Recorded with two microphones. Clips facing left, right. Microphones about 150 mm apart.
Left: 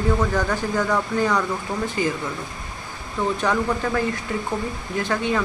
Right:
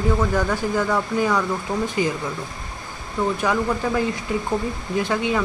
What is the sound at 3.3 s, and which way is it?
Speech, 10° right (ahead or behind).